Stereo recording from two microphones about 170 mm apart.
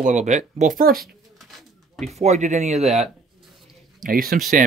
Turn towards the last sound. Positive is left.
turn(degrees=-55)  # may be behind; listen again after turning